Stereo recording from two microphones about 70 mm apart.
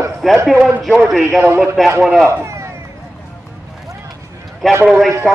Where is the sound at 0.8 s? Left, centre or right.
Centre.